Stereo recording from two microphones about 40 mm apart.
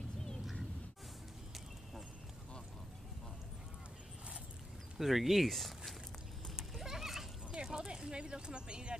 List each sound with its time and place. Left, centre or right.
4.9 s speech: centre
6.7 s goat: centre
7.6 s speech: centre